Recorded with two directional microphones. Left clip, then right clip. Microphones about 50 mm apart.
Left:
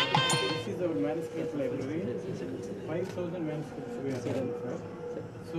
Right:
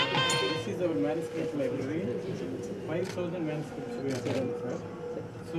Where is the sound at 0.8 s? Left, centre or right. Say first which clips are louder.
Right 2 dB; centre.